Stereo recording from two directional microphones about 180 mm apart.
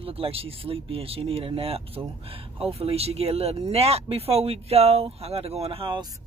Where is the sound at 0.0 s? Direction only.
30° right (ahead or behind).